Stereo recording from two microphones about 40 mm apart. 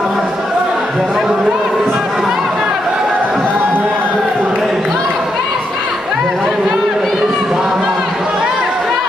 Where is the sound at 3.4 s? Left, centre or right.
Right.